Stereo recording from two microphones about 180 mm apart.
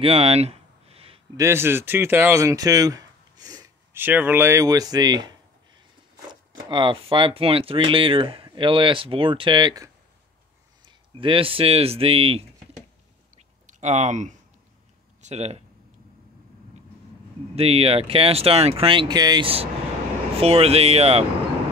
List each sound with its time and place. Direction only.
0.0 s a sound: 30° right (ahead or behind)
1.3 s speech: 15° right (ahead or behind)
6.7 s speech: 30° right (ahead or behind)
10.9 s speech: 30° right (ahead or behind)
13.7 s speech: 40° right (ahead or behind)
17.6 s speech: 35° right (ahead or behind)